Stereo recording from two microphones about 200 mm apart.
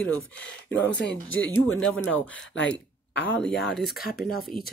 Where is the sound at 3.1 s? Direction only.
60° left (ahead or behind).